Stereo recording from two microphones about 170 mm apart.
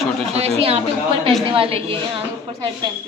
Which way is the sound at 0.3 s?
35° right (ahead or behind).